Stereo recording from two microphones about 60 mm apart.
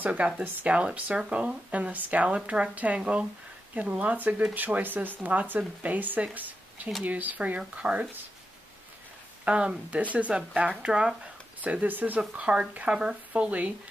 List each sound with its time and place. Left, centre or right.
0.0 s speech: right
6.3 s a sound: right
7.1 s speech: right
9.4 s speech: centre
11.6 s speech: right
12.2 s speech: centre